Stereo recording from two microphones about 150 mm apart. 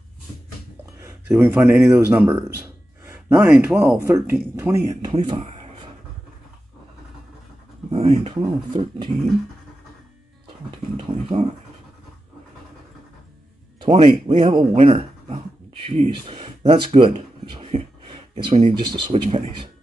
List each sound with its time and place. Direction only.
1.3 s speech: 10° right (ahead or behind)
5.0 s speech: 30° right (ahead or behind)
5.5 s a sound: 40° right (ahead or behind)
7.9 s speech: 40° right (ahead or behind)
11.0 s a sound: 35° right (ahead or behind)
14.2 s speech: 30° right (ahead or behind)